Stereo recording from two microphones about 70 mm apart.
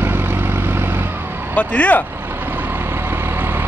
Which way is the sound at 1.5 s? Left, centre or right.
Left.